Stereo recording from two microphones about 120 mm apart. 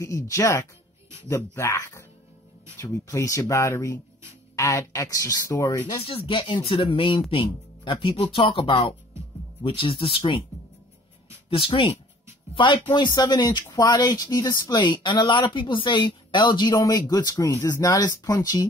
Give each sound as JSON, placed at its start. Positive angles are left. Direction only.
{"t": 0.0, "sound": "speech", "side_deg": 25}
{"t": 6.0, "sound": "speech", "side_deg": 50}
{"t": 11.4, "sound": "speech", "side_deg": 45}